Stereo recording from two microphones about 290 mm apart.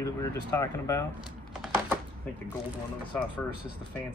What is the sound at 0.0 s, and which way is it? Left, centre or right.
Speech, centre.